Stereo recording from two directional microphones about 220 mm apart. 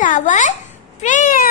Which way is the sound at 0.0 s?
35° left (ahead or behind).